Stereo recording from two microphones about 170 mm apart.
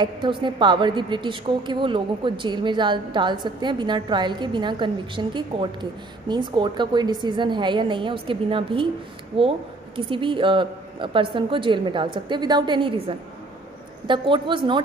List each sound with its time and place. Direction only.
0.0 s a woman's voice: 30° right (ahead or behind)